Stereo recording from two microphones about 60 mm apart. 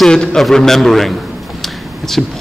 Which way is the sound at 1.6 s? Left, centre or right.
Centre.